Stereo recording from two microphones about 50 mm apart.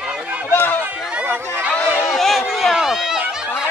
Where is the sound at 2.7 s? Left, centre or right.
Centre.